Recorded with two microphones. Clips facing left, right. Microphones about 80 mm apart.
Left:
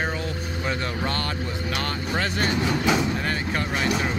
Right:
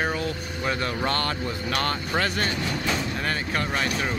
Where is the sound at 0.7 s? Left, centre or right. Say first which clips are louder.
Right 2 dB; centre.